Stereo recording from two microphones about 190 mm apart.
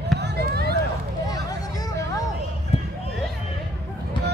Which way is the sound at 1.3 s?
20° left (ahead or behind).